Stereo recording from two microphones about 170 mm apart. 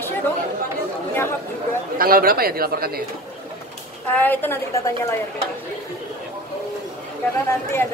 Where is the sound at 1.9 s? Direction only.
60° right (ahead or behind).